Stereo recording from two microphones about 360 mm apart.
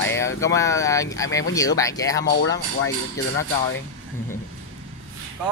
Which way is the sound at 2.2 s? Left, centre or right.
Left.